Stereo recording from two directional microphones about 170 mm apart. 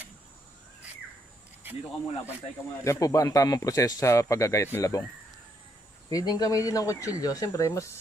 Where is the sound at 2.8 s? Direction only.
20° left (ahead or behind).